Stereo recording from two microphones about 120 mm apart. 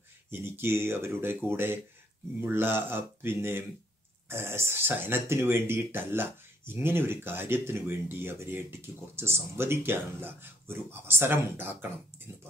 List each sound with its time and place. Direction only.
0.3 s speech: 20° right (ahead or behind)